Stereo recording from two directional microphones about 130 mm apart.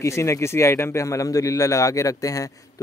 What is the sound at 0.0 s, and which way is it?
A man's voice, 20° left (ahead or behind).